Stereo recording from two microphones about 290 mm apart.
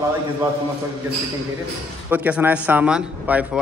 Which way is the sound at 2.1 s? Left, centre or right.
Centre.